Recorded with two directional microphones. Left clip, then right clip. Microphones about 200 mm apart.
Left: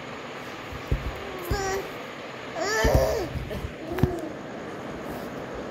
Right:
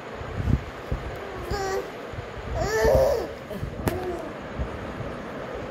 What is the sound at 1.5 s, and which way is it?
Babbling, 15° right (ahead or behind).